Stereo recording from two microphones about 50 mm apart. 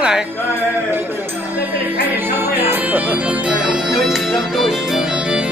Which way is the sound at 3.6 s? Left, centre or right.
Centre.